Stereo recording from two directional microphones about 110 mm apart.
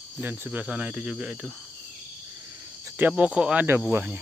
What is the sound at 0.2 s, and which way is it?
Cricket, 15° right (ahead or behind).